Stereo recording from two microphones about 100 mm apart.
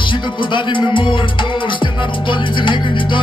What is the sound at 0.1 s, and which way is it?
Music, 55° left (ahead or behind).